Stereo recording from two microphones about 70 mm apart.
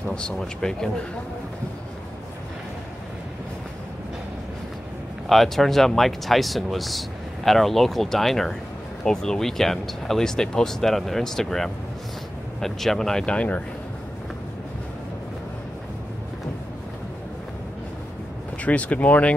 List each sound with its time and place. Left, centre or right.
0.1 s speech: centre
5.3 s speech: centre
18.6 s speech: centre